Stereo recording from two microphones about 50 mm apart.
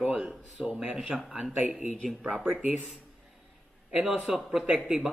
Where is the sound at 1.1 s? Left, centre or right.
Centre.